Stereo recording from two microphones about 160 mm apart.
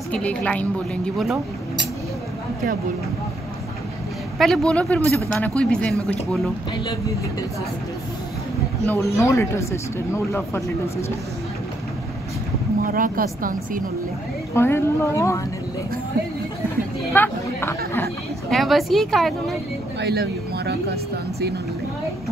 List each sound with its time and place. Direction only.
0.1 s speech: 10° left (ahead or behind)
4.4 s speech: 5° left (ahead or behind)
8.8 s speech: 15° left (ahead or behind)
12.8 s speech: 60° right (ahead or behind)
14.5 s speech: 15° left (ahead or behind)
17.1 s chatter: 15° left (ahead or behind)
18.5 s speech: centre (ahead or behind)
20.0 s speech: 90° right